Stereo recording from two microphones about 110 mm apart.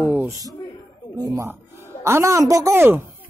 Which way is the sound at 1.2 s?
35° right (ahead or behind).